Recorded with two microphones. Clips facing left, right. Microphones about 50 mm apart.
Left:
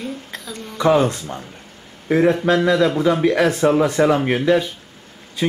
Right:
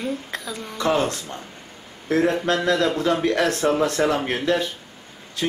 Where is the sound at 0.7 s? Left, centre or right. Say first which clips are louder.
Left 6 dB; centre.